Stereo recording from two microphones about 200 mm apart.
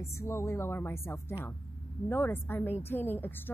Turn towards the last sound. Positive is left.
turn(degrees=10)  # may be behind; listen again after turning